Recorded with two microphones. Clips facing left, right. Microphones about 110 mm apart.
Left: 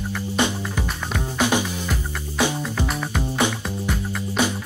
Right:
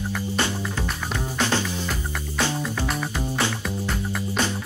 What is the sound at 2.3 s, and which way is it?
Music, 15° left (ahead or behind).